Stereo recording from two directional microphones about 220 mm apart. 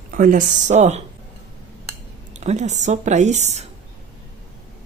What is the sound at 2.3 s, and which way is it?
A woman's voice, 30° right (ahead or behind).